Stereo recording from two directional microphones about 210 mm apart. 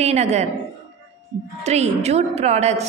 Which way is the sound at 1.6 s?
30° right (ahead or behind).